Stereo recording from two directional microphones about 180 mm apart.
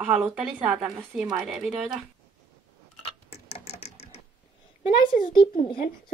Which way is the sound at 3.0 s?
30° left (ahead or behind).